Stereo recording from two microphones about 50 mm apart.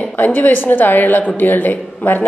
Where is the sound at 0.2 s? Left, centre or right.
Left.